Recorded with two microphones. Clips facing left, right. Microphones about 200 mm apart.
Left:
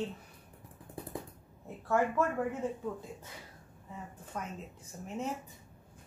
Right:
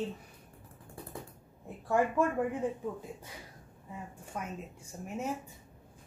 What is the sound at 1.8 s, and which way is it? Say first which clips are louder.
Speech: right 1 dB; 15° right (ahead or behind).